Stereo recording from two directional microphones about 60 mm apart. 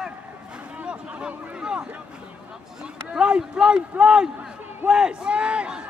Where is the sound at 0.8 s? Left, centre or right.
Centre.